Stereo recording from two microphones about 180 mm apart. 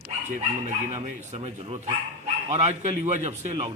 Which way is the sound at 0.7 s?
40° right (ahead or behind).